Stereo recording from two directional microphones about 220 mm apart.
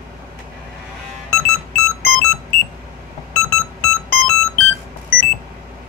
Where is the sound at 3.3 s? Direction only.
5° left (ahead or behind).